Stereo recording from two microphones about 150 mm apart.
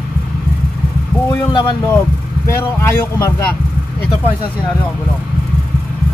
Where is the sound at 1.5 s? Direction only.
30° left (ahead or behind).